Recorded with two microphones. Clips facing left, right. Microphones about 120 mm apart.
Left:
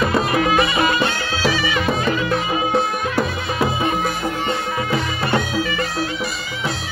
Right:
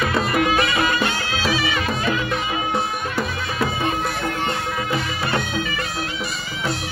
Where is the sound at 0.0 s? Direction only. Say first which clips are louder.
Left 3 dB; centre (ahead or behind).